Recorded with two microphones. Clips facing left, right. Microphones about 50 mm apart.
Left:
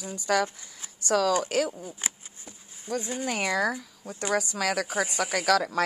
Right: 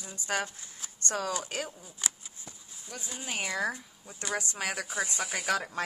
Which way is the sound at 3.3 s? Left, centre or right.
Left.